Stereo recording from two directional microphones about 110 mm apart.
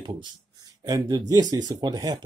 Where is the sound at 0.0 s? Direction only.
45° right (ahead or behind).